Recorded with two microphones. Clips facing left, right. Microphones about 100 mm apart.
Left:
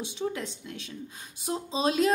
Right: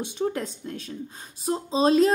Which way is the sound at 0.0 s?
45° right (ahead or behind).